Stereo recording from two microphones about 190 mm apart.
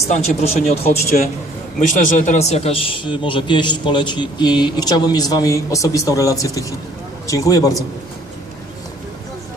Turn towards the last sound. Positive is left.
turn(degrees=20)  # may be behind; listen again after turning